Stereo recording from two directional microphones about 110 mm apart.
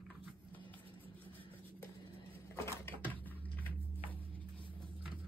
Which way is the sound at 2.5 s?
25° left (ahead or behind).